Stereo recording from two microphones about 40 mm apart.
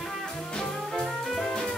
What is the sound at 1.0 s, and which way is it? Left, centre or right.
Music, centre.